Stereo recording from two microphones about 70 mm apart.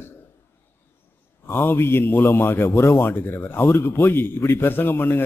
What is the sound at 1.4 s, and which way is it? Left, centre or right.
A man's voice, left.